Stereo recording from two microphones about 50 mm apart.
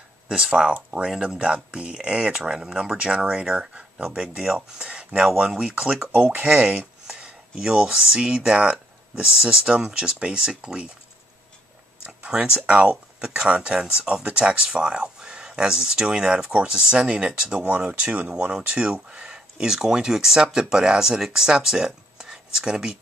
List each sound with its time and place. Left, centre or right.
1.1 s speech: centre
6.1 s speech: right
12.1 s a sound: right
12.6 s speech: right
17.6 s speech: right; by 22.9 s centre